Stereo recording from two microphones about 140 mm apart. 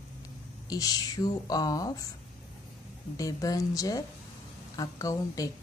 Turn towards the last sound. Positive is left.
turn(degrees=25)  # may be behind; listen again after turning